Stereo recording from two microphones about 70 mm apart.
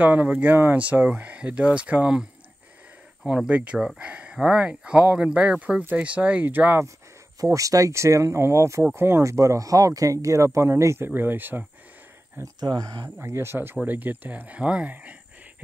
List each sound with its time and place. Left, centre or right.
0.0 s speech: right
3.3 s speech: centre
7.4 s speech: right
11.1 s speech: right
12.5 s speech: right
13.2 s speech: right